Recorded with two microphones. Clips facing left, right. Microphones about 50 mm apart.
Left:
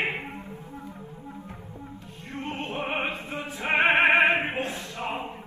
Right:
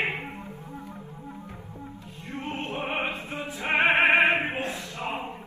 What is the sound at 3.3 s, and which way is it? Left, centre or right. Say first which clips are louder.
Choir: even; left.